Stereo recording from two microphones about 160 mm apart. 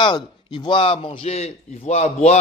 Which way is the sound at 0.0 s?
30° left (ahead or behind).